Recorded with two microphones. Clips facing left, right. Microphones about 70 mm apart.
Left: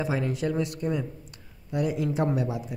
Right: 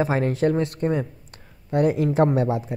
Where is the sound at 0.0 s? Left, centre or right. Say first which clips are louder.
Right 7 dB; right.